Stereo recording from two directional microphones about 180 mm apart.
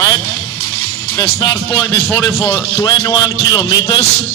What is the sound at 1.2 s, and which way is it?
Speech, 20° left (ahead or behind).